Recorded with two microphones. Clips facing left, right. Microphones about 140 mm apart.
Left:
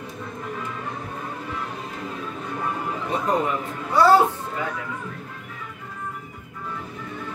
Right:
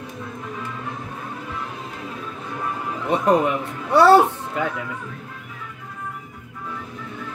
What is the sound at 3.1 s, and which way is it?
Speech, 70° right (ahead or behind).